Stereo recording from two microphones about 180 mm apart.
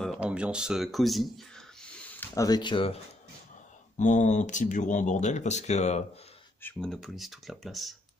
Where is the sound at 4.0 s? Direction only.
45° left (ahead or behind).